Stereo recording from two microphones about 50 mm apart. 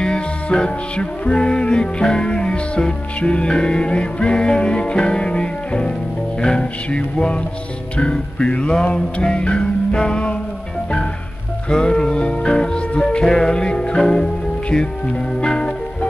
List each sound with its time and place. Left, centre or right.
0.0 s music: centre
11.7 s music: centre